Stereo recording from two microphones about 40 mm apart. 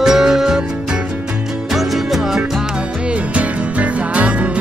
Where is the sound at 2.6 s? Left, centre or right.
Right.